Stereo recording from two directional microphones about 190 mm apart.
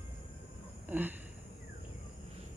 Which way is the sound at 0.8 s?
10° right (ahead or behind).